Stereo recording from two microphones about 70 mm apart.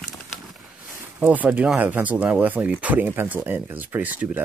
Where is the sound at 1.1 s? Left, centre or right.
Right.